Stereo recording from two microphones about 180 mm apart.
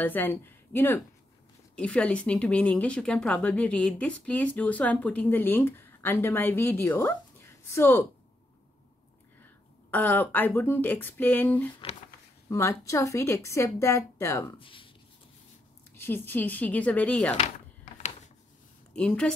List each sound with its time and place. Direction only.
0.0 s speech: 10° left (ahead or behind)
9.8 s speech: 10° left (ahead or behind)
14.6 s speech: 30° left (ahead or behind)
15.9 s speech: 10° left (ahead or behind)
17.9 s a sound: 40° left (ahead or behind)
18.9 s a woman's voice: 5° left (ahead or behind)